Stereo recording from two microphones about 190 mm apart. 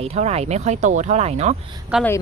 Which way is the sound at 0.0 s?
35° right (ahead or behind).